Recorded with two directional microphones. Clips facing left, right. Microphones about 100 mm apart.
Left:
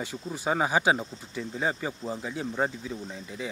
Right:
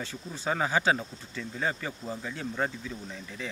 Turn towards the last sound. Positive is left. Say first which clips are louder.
# left 3 dB
turn(degrees=15)  # may be behind; listen again after turning